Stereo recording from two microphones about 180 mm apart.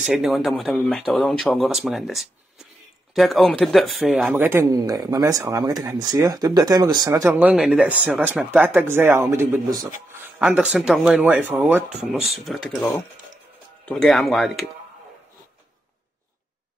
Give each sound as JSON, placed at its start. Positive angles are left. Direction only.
{"t": 0.0, "sound": "speech", "side_deg": 0}
{"t": 4.4, "sound": "speech", "side_deg": -15}
{"t": 10.4, "sound": "speech", "side_deg": -5}